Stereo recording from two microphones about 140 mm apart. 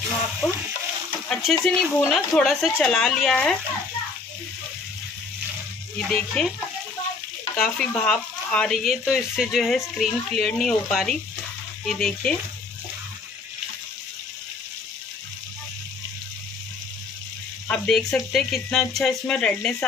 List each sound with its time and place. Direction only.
0.4 s frying: 15° left (ahead or behind)
1.3 s speech: 5° left (ahead or behind)
5.9 s speech: centre (ahead or behind)
7.5 s speech: 5° left (ahead or behind)
17.6 s speech: 5° left (ahead or behind)